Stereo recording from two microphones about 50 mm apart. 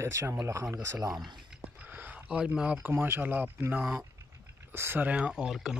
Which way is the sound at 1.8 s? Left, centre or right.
Right.